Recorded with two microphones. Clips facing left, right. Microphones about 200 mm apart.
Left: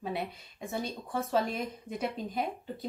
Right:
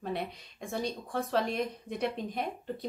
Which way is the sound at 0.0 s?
5° left (ahead or behind).